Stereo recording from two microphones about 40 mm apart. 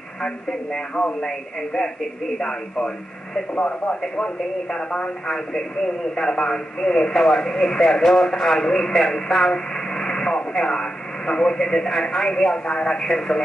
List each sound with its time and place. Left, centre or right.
1.2 s speech: centre